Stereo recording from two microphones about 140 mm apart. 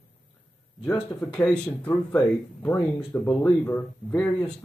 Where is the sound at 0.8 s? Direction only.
20° left (ahead or behind).